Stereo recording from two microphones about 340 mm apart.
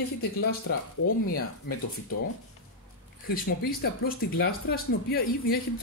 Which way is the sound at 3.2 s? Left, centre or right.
Left.